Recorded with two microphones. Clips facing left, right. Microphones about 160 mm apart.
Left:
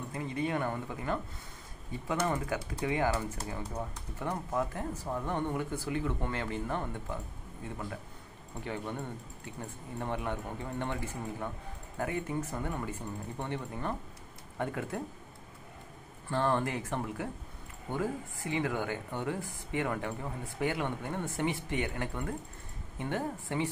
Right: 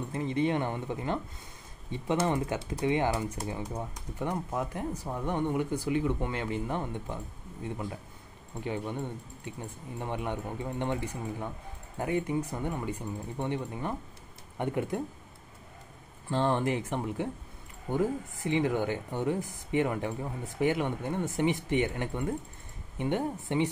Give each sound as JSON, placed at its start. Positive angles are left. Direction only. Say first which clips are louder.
{"t": 0.1, "sound": "speech", "louder": "right 5 dB", "side_deg": -25}
{"t": 9.9, "sound": "speech", "louder": "right 1 dB", "side_deg": -15}
{"t": 16.3, "sound": "speech", "louder": "right 2 dB", "side_deg": -20}